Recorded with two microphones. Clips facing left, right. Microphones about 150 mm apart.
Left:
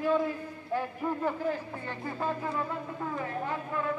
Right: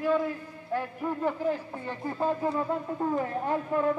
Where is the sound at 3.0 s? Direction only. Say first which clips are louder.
Right 5 dB; 45° right (ahead or behind).